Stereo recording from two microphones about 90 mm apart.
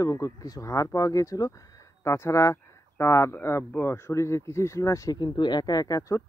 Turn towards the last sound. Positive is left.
turn(degrees=40)  # may be behind; listen again after turning